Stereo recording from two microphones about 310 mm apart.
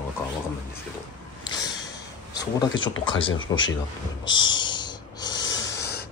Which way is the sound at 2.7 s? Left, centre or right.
Left.